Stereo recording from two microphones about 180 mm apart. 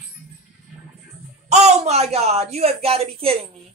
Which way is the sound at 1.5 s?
35° right (ahead or behind).